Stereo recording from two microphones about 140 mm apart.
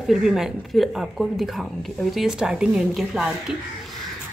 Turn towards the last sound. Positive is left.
turn(degrees=0)  # may be behind; listen again after turning